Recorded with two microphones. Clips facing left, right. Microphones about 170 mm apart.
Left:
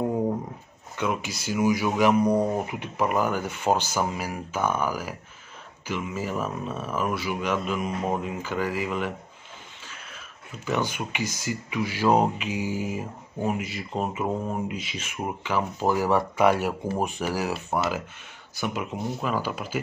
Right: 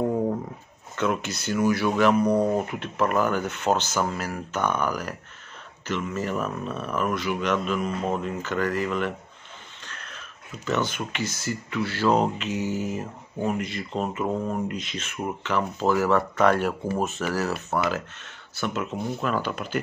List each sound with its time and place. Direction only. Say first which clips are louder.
0.9 s speech: right 2 dB; 10° left (ahead or behind)